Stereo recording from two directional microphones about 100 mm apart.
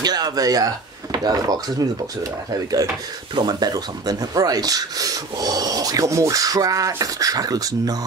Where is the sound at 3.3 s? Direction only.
45° right (ahead or behind).